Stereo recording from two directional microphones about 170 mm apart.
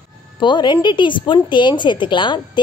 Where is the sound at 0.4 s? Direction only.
25° left (ahead or behind).